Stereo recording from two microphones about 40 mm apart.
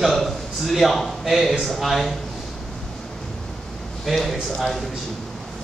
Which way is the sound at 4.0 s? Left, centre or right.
Centre.